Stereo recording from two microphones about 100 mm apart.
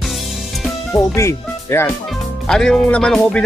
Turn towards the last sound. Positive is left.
turn(degrees=10)  # may be behind; listen again after turning